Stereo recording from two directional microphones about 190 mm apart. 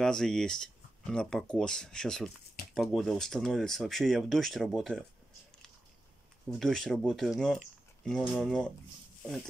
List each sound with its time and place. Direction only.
0.0 s speech: 5° left (ahead or behind)
6.6 s speech: centre (ahead or behind)